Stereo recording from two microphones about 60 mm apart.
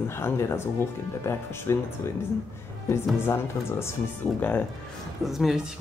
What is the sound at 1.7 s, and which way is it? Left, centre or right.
Speech, left.